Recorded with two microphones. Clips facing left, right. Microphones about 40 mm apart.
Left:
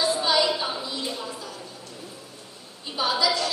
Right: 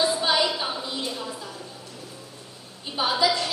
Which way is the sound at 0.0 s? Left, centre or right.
Right.